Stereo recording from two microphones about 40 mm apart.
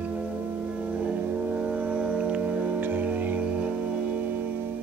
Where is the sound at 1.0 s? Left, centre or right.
Right.